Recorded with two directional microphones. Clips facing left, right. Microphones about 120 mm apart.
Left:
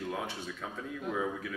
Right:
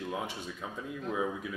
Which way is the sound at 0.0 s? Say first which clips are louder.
Even; 10° right (ahead or behind).